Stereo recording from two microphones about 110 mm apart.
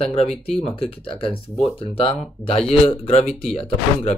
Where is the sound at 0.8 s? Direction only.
55° left (ahead or behind).